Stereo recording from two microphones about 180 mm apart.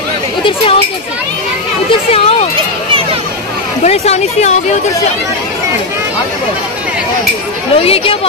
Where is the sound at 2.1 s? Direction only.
35° left (ahead or behind).